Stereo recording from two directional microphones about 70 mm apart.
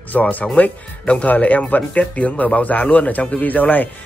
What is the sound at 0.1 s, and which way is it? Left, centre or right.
Speech, left.